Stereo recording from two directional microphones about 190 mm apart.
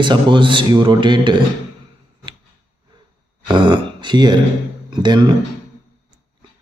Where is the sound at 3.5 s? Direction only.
25° right (ahead or behind).